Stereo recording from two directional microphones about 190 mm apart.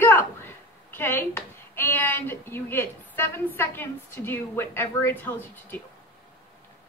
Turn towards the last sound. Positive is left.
turn(degrees=10)  # may be behind; listen again after turning